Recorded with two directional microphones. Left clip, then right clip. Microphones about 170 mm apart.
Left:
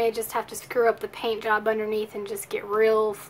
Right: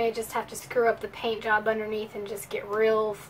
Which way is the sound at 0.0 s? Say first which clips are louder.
Left 3 dB; 55° left (ahead or behind).